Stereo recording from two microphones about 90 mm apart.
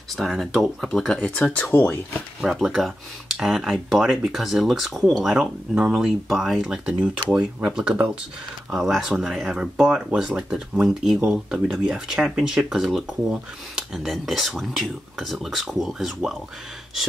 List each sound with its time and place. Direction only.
0.1 s speech: centre (ahead or behind)
1.7 s speech: 20° left (ahead or behind)
2.4 s speech: centre (ahead or behind)